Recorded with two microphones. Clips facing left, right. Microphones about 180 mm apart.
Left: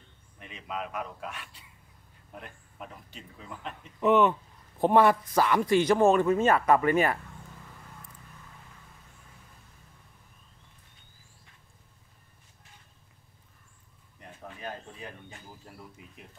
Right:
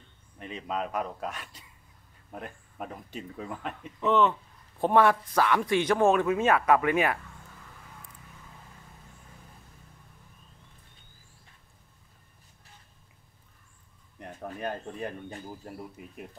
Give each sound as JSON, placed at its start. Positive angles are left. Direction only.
{"t": 0.4, "sound": "speech", "side_deg": -35}
{"t": 4.0, "sound": "speech", "side_deg": 15}
{"t": 14.3, "sound": "speech", "side_deg": -45}